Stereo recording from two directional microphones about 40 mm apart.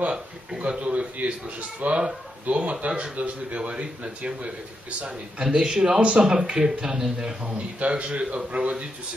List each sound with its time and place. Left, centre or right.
0.6 s a man's voice: right
5.0 s speech: centre
5.9 s a man's voice: right